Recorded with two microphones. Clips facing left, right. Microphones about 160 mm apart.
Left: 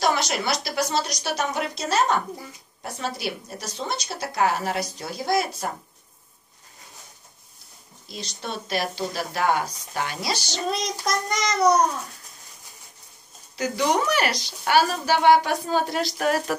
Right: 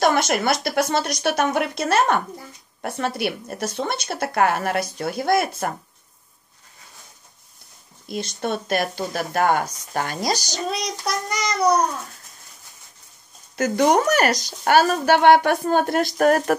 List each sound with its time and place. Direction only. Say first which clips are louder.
0.0 s a woman's voice: right 5 dB; 55° right (ahead or behind)
8.1 s speech: right 8 dB; 55° right (ahead or behind)
10.7 s child singing: left 1 dB; centre (ahead or behind)
13.6 s speech: right 5 dB; 50° right (ahead or behind)